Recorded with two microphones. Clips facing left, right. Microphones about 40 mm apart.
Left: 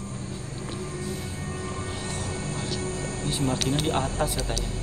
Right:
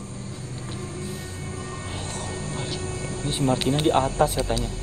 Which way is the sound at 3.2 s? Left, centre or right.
Centre.